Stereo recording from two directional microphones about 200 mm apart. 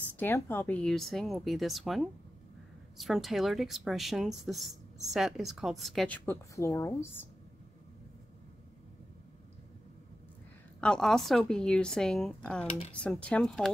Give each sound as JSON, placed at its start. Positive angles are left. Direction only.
{"t": 0.2, "sound": "a woman's voice", "side_deg": 10}
{"t": 10.8, "sound": "a woman's voice", "side_deg": 5}